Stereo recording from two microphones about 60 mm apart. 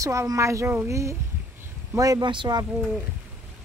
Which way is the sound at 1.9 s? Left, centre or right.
Right.